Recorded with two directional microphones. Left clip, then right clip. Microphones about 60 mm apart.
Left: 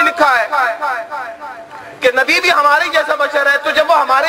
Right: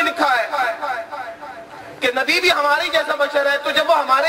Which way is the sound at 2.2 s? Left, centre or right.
Left.